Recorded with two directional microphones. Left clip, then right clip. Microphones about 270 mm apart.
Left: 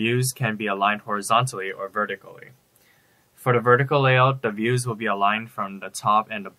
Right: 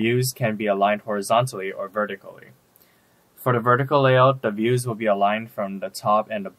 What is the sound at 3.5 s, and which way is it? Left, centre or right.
Speech, right.